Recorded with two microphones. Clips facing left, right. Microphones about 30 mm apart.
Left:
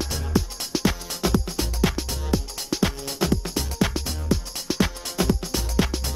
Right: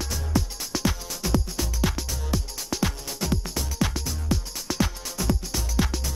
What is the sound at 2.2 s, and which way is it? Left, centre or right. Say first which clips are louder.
Music: left 4 dB; centre.